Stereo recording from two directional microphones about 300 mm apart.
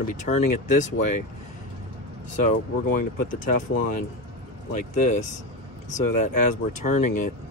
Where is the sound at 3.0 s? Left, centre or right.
Left.